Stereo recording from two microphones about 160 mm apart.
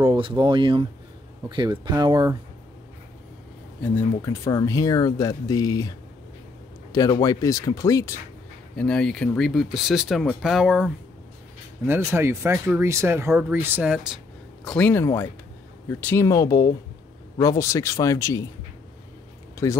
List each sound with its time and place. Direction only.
0.0 s speech: 35° right (ahead or behind)
3.8 s speech: 15° left (ahead or behind)
8.7 s speech: 5° left (ahead or behind)
11.8 s speech: 15° right (ahead or behind)
14.6 s speech: 5° left (ahead or behind)
19.5 s a sound: 20° left (ahead or behind)